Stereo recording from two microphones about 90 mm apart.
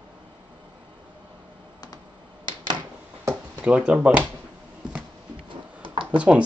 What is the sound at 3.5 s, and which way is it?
Speech, 15° right (ahead or behind).